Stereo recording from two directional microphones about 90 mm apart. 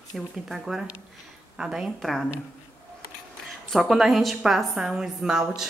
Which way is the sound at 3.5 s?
Centre (ahead or behind).